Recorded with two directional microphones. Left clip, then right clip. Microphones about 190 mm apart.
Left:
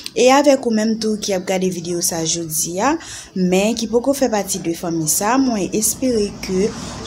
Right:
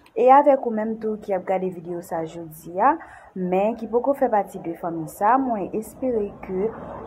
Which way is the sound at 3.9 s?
10° left (ahead or behind).